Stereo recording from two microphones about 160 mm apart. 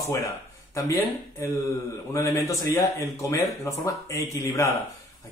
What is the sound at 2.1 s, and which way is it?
Speech, 15° left (ahead or behind).